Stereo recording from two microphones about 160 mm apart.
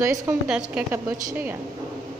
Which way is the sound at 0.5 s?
5° right (ahead or behind).